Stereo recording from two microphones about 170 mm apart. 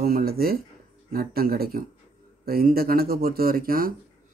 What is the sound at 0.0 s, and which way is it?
Speech, 65° right (ahead or behind).